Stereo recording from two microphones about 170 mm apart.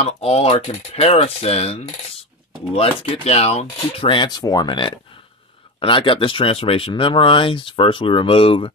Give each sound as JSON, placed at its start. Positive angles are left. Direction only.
{"t": 0.0, "sound": "speech", "side_deg": 35}